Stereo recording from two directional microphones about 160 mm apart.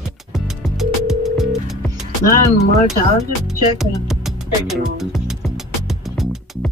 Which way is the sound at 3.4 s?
Centre (ahead or behind).